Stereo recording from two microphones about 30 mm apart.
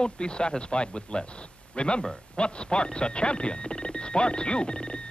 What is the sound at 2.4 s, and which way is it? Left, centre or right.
A man's voice, left.